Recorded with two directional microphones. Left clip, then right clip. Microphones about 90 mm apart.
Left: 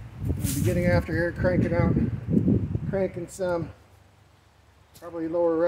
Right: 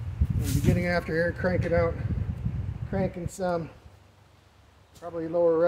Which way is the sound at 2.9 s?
30° right (ahead or behind).